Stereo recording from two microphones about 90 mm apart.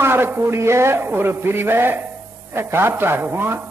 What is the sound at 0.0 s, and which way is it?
A man's voice, 25° right (ahead or behind).